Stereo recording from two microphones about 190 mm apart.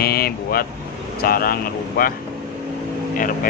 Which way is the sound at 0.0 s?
55° left (ahead or behind).